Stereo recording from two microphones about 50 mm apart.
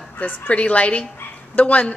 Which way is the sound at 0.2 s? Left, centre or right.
Left.